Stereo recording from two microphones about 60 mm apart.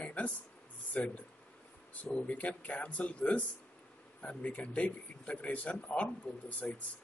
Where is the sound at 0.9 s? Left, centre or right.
Left.